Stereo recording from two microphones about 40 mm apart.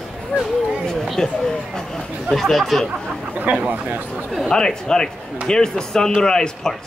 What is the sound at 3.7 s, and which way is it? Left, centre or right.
Speech, right.